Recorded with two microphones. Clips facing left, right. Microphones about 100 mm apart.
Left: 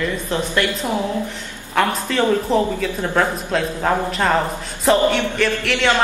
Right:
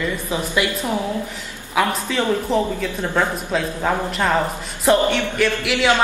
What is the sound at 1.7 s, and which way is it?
Speech, centre (ahead or behind).